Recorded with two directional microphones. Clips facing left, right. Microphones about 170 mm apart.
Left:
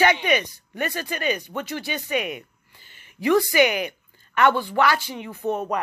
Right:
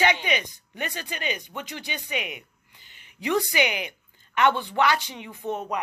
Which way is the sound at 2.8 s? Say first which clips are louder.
Left 7 dB; 15° right (ahead or behind).